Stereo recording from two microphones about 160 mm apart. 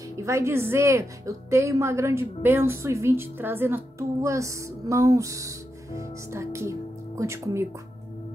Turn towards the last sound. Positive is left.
turn(degrees=-20)  # may be behind; listen again after turning